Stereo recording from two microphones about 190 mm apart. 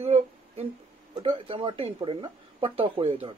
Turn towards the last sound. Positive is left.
turn(degrees=-30)  # may be behind; listen again after turning